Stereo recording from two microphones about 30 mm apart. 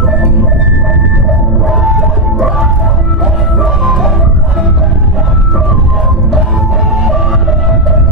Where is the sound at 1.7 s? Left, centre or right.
Centre.